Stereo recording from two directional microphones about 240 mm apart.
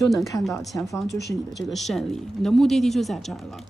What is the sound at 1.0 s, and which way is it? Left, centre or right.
Speech, left.